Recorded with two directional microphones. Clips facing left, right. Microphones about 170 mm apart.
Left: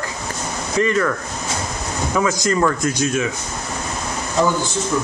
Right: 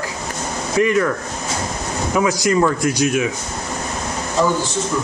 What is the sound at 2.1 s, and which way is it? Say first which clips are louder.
A man's voice: right 2 dB; 15° right (ahead or behind).